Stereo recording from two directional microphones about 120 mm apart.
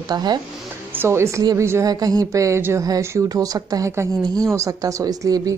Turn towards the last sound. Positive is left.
turn(degrees=-30)  # may be behind; listen again after turning